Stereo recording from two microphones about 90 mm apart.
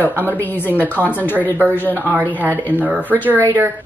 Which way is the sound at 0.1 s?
20° right (ahead or behind).